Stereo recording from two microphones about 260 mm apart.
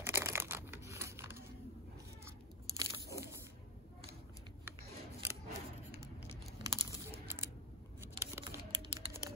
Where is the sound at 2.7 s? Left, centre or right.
Centre.